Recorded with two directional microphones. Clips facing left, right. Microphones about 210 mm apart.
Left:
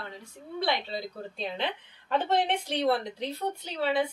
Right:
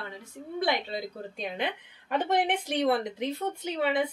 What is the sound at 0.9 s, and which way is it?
A woman's voice, 15° right (ahead or behind).